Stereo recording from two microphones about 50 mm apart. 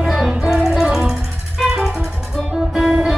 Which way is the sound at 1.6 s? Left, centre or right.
Centre.